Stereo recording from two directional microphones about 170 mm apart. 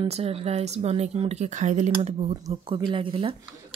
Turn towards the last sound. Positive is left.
turn(degrees=-30)  # may be behind; listen again after turning